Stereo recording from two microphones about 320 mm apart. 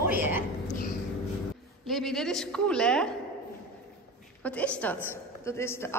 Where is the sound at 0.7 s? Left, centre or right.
Left.